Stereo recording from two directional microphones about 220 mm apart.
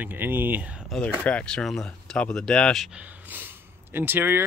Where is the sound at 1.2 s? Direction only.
5° left (ahead or behind).